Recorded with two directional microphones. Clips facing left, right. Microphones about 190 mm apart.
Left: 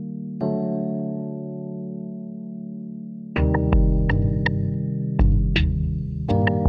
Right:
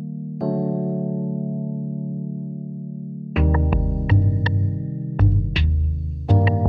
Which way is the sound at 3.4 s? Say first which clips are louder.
Left 2 dB; centre (ahead or behind).